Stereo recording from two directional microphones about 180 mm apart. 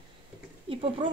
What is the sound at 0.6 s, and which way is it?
Speech, 30° right (ahead or behind).